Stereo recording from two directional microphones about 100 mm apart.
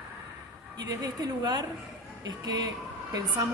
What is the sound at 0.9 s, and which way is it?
Speech, 40° right (ahead or behind).